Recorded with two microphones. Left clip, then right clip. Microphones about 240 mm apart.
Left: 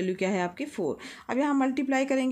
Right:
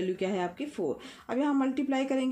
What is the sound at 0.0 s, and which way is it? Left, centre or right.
Speech, left.